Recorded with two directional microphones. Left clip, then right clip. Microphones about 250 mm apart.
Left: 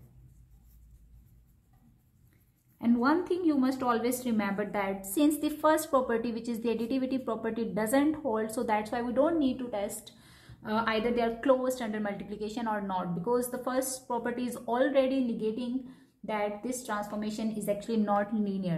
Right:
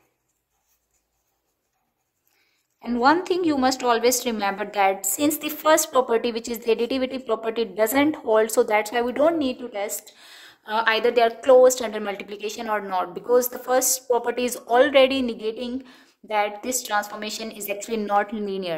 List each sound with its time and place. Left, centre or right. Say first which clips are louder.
3.0 s a woman's voice: right 11 dB; right